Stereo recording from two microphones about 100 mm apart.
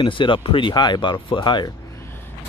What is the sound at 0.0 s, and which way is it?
Speech, 55° left (ahead or behind).